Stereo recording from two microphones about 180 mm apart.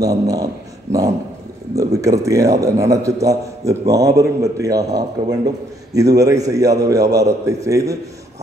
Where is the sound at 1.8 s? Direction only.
20° right (ahead or behind).